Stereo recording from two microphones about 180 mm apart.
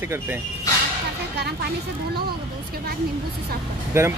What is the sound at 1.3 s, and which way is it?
Speech, 65° right (ahead or behind).